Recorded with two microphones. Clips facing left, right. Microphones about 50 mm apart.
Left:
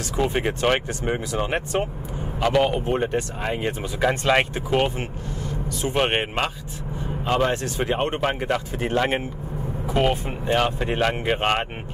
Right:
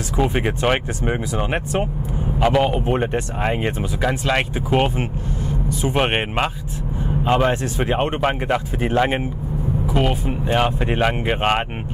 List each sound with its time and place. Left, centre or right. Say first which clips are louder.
0.2 s speech: right 2 dB; centre
2.9 s speech: right 2 dB; right
4.0 s speech: left 1 dB; centre
4.6 s speech: right 3 dB; centre
9.8 s speech: left 1 dB; centre
10.4 s speech: right 2 dB; centre